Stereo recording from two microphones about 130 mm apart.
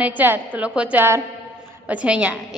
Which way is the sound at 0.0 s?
15° right (ahead or behind).